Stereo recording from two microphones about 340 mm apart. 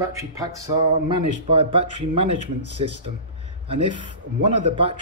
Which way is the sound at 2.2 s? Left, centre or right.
Right.